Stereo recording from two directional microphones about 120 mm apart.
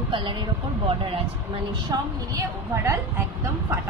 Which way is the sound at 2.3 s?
30° right (ahead or behind).